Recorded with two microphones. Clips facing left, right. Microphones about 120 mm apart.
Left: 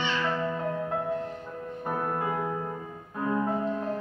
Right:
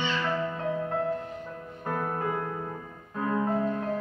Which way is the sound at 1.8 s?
10° left (ahead or behind).